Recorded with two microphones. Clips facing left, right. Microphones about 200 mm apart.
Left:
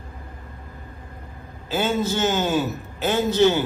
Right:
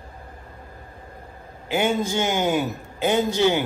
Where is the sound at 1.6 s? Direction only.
15° right (ahead or behind).